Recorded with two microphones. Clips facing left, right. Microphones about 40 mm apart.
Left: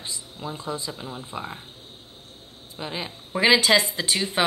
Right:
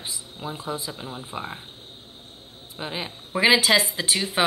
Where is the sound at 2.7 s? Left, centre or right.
Centre.